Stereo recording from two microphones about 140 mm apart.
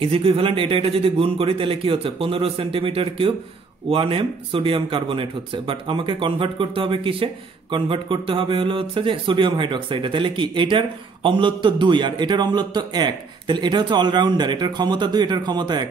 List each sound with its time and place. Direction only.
0.0 s speech: 40° right (ahead or behind)